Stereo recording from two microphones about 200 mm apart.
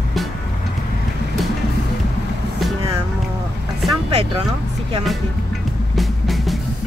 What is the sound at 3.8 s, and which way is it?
Vehicle, centre (ahead or behind).